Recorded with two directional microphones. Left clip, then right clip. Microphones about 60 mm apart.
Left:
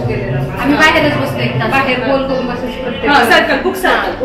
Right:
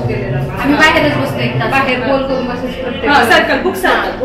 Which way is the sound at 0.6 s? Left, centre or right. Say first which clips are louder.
Even; centre.